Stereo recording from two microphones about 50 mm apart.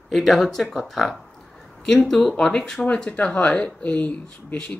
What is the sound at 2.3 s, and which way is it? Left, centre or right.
Speech, centre.